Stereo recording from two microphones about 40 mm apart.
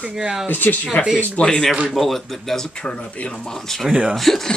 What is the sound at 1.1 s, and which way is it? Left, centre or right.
Speech, left.